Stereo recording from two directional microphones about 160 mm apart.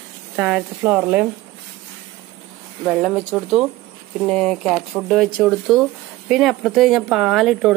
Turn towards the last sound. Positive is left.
turn(degrees=0)  # may be behind; listen again after turning